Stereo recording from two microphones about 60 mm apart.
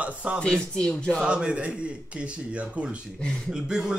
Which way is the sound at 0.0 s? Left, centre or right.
Right.